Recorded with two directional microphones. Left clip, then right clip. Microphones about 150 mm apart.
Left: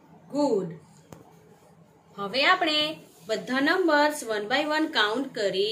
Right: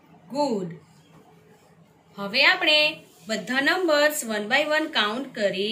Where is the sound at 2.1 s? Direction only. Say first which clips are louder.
Right 2 dB; 90° left.